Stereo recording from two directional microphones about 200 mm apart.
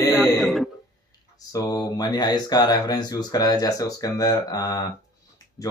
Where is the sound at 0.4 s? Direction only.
Centre (ahead or behind).